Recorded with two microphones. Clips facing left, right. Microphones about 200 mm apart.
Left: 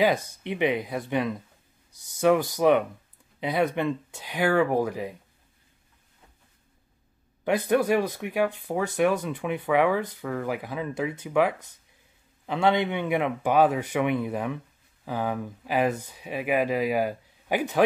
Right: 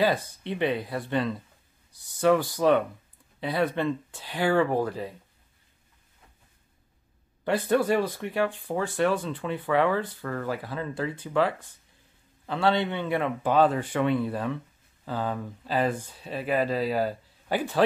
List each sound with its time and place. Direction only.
0.4 s speech: 15° left (ahead or behind)
7.4 s speech: 15° left (ahead or behind)